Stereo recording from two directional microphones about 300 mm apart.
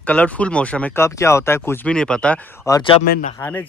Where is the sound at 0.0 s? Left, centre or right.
Centre.